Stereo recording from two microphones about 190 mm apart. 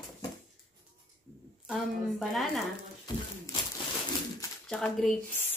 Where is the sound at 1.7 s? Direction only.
Centre (ahead or behind).